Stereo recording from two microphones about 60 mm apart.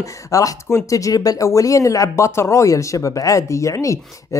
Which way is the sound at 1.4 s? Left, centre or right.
Left.